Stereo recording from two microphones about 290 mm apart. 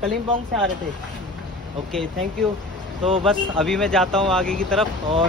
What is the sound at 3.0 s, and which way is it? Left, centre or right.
Speech, centre.